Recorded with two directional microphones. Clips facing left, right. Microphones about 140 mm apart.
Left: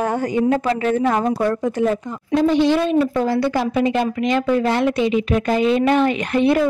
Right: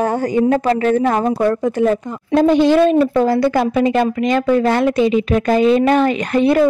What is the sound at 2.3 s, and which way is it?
A woman's voice, 50° right (ahead or behind).